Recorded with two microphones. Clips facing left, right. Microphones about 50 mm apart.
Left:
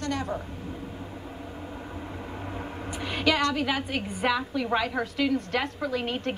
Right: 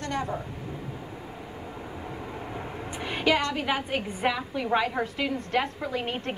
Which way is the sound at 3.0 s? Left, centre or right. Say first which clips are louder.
Even; right.